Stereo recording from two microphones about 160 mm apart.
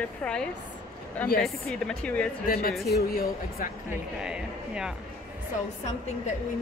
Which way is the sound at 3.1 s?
65° left (ahead or behind).